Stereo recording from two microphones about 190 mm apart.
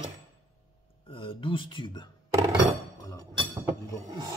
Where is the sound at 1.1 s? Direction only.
25° left (ahead or behind).